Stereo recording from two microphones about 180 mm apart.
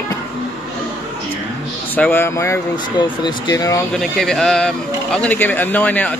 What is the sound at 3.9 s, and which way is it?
Speech, centre (ahead or behind).